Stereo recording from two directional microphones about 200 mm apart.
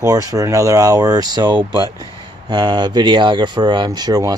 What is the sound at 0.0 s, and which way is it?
Speech, 15° right (ahead or behind).